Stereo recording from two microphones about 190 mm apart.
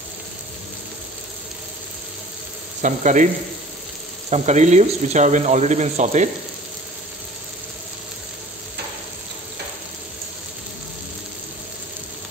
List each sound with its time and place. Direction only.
2.8 s speech: 40° right (ahead or behind)
4.3 s speech: 40° right (ahead or behind)